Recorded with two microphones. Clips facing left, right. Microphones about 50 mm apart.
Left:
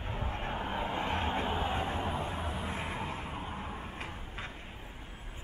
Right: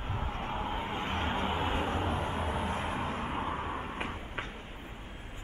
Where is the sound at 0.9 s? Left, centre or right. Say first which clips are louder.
Left 1 dB; right.